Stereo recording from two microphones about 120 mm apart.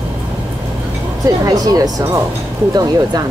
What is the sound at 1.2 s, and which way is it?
Speech, 30° right (ahead or behind).